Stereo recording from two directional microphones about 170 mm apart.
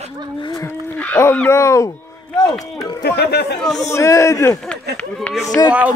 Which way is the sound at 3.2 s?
75° left (ahead or behind).